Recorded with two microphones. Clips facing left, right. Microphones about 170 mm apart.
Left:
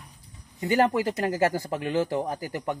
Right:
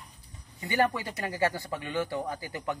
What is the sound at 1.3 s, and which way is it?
Speech, 40° left (ahead or behind).